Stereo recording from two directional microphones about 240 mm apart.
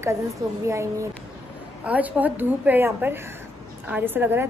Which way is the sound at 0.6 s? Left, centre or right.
Centre.